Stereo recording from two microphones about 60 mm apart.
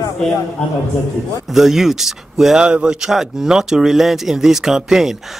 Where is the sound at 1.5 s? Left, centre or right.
Centre.